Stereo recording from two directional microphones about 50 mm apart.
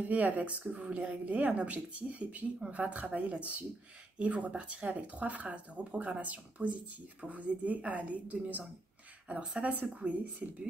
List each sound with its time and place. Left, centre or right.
0.1 s speech: right
9.3 s speech: centre
9.6 s speech: right